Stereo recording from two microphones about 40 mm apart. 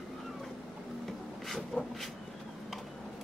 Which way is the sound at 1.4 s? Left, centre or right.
Centre.